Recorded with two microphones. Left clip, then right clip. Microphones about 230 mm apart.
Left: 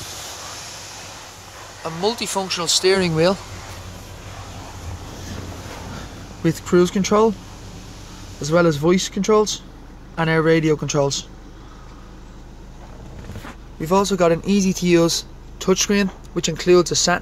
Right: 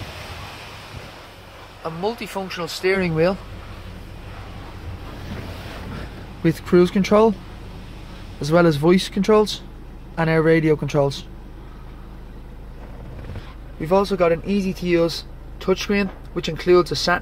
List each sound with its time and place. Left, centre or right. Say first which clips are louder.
1.9 s speech: left 3 dB; centre
6.4 s speech: even; centre
8.4 s speech: even; centre
13.7 s speech: even; centre